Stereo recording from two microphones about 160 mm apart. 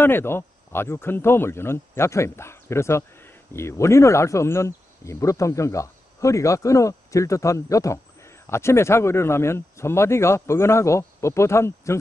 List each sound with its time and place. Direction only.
0.0 s speech: 15° left (ahead or behind)